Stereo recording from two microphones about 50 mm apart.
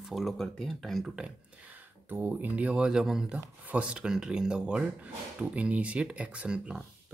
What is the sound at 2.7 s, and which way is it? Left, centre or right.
Speech, centre.